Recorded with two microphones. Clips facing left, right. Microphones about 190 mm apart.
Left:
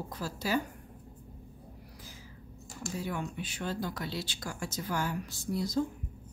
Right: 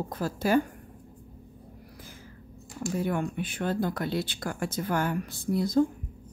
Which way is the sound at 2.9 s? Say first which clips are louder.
Right 7 dB; 55° right (ahead or behind).